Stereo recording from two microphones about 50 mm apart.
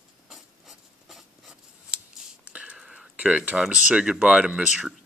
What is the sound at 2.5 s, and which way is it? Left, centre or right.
Whispering, centre.